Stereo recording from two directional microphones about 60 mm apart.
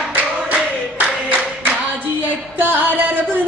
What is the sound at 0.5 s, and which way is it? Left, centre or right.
Clapping, right.